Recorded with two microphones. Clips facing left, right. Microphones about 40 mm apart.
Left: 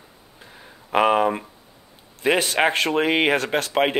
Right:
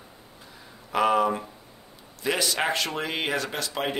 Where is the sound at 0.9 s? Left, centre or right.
Left.